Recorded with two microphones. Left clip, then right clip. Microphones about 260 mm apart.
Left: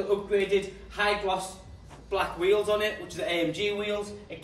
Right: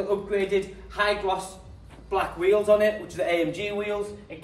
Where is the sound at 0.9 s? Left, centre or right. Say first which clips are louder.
Right 2 dB; centre.